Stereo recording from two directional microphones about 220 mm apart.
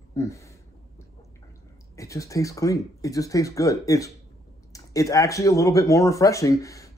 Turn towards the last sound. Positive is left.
turn(degrees=15)  # may be behind; listen again after turning